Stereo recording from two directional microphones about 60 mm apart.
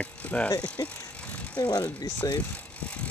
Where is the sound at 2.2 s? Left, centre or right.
Left.